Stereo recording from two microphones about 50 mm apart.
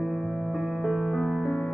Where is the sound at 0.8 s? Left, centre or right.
Centre.